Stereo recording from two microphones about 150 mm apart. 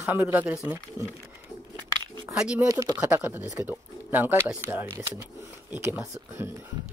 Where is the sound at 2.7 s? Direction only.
25° right (ahead or behind).